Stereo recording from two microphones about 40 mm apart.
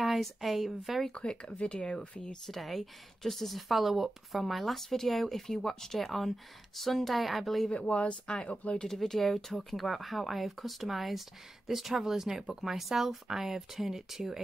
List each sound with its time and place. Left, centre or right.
0.0 s speech: centre
1.1 s speech: left
2.4 s speech: centre
7.7 s speech: left
8.8 s speech: centre